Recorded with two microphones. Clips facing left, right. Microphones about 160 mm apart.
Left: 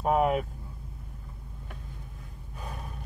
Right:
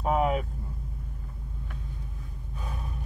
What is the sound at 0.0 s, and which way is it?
Vehicle, 5° left (ahead or behind).